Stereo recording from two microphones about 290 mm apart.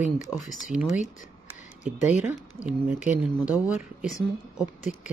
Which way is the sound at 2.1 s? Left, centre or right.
Centre.